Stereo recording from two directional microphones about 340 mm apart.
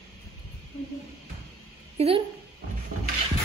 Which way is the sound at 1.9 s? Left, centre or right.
Centre.